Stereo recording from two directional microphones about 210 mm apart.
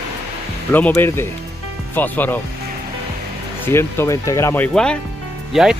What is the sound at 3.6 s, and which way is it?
Speech, 10° left (ahead or behind).